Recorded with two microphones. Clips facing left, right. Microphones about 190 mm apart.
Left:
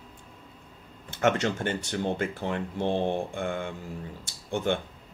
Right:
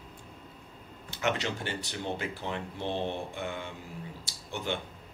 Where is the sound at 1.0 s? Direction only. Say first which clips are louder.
Left 6 dB; 50° left (ahead or behind).